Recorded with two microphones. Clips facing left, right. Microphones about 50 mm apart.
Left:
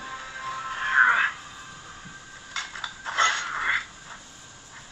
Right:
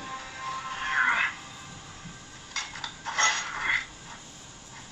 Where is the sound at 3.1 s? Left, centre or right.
Centre.